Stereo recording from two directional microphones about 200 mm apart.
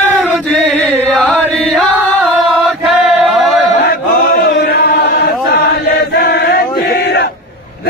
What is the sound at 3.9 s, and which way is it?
Chant, 50° left (ahead or behind).